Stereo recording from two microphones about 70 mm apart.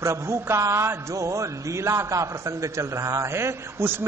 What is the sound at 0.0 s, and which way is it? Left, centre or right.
A man's voice, right.